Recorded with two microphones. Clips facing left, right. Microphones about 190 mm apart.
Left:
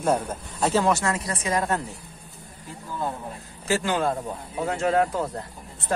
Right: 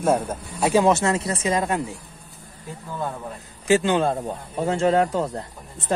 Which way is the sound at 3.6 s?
20° right (ahead or behind).